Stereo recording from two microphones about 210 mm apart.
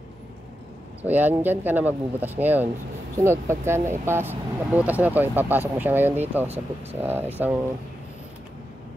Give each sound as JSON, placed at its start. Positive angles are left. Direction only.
{"t": 1.0, "sound": "speech", "side_deg": -10}